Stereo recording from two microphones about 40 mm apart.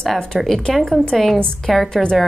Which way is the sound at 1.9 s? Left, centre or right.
Centre.